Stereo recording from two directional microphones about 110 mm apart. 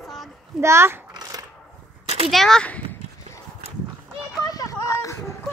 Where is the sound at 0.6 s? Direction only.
25° right (ahead or behind).